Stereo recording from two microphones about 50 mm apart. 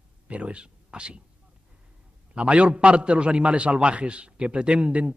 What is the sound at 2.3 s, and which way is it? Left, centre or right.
A man's voice, right.